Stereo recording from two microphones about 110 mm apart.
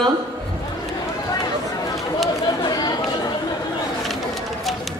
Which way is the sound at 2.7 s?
40° left (ahead or behind).